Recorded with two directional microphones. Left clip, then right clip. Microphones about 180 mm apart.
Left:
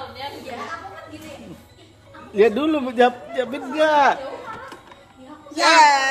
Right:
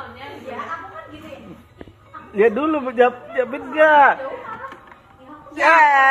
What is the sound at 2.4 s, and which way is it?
A man's voice, 15° left (ahead or behind).